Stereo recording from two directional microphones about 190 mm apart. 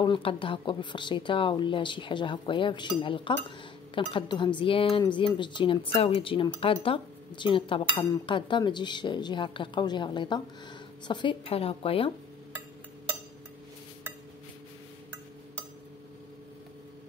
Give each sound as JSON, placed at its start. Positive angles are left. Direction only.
{"t": 0.0, "sound": "speech", "side_deg": 25}